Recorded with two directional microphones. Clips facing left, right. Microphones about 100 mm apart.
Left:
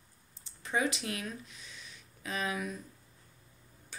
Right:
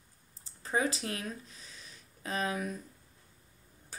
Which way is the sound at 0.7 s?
35° right (ahead or behind).